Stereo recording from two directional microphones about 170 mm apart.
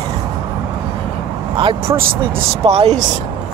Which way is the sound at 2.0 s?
60° right (ahead or behind).